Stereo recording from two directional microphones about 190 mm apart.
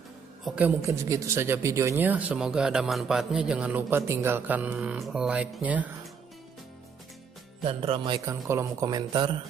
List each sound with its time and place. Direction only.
0.4 s speech: 5° right (ahead or behind)
7.6 s speech: 30° right (ahead or behind)